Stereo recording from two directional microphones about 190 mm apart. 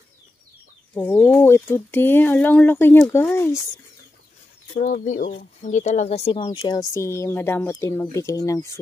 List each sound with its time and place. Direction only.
0.9 s speech: 10° left (ahead or behind)
4.7 s speech: 40° left (ahead or behind); by 8.7 s 15° left (ahead or behind)